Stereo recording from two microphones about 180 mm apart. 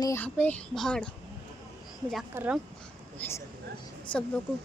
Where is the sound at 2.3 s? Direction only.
10° right (ahead or behind).